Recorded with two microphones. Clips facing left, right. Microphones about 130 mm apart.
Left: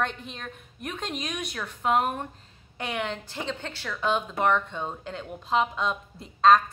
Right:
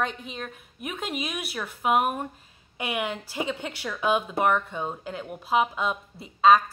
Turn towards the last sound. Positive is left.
turn(degrees=-5)  # may be behind; listen again after turning